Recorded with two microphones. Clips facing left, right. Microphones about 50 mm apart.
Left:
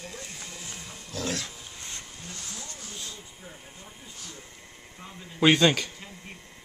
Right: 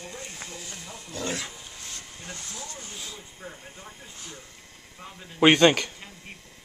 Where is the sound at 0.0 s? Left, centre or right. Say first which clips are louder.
Right 1 dB; centre.